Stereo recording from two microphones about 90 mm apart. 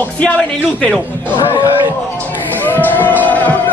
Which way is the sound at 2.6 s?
20° left (ahead or behind).